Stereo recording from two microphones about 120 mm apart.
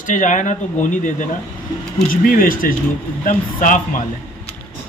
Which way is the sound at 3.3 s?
90° left.